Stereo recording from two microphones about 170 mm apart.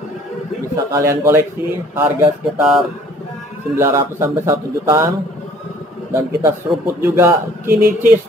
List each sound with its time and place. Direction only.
0.9 s a man's voice: 15° right (ahead or behind)
6.1 s a man's voice: 15° right (ahead or behind)